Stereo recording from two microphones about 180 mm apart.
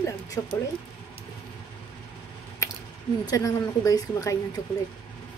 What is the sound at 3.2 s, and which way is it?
A woman's voice, 20° left (ahead or behind).